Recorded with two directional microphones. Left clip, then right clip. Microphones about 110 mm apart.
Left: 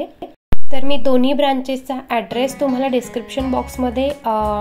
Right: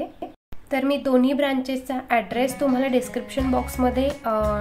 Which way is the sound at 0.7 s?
35° left (ahead or behind).